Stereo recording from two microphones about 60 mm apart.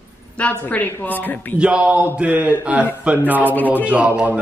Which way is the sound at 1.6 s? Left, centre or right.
Centre.